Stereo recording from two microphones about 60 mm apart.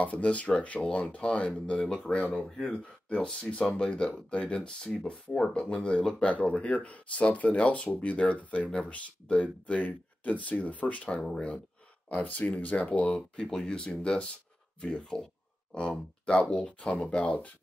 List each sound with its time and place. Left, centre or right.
0.0 s speech: left